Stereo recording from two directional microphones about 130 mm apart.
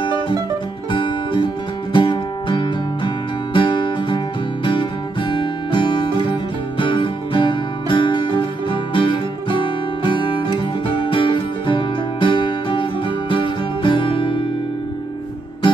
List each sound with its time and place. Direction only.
0.9 s music: 40° left (ahead or behind)
5.3 s music: 40° left (ahead or behind)